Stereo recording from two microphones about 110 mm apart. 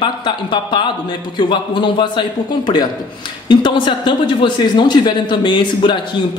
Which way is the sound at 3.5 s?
45° left (ahead or behind).